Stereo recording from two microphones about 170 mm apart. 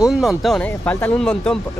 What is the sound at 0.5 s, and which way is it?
Speech, 10° left (ahead or behind).